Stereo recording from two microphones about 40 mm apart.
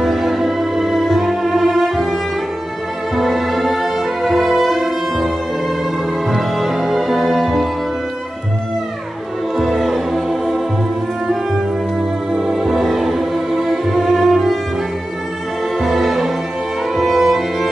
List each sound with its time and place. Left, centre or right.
0.0 s music: centre
3.2 s music: centre
6.3 s music: centre
9.6 s music: centre
12.4 s music: centre
15.8 s music: centre